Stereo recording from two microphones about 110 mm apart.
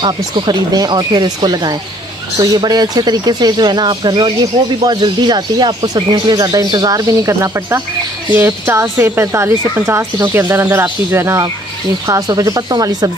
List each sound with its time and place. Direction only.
0.0 s speech: 40° right (ahead or behind)